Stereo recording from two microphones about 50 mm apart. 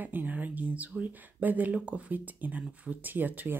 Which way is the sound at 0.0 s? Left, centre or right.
Right.